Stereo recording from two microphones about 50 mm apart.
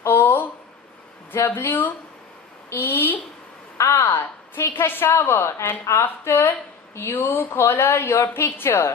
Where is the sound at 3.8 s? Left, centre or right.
Left.